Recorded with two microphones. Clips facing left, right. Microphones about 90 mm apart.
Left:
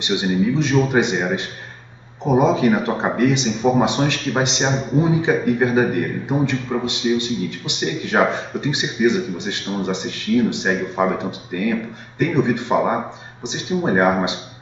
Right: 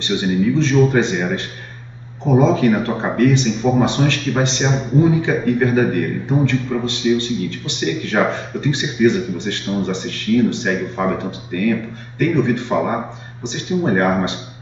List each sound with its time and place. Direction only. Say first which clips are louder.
0.0 s a man's voice: right 1 dB; 15° left (ahead or behind)